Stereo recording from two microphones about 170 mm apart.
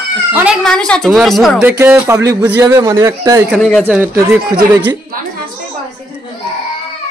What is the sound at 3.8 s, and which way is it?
A man's voice, 10° right (ahead or behind).